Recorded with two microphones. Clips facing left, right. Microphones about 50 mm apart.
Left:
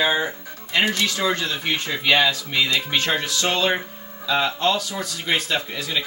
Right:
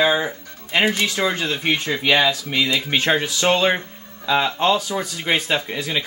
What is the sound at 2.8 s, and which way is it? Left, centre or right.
Speech, right.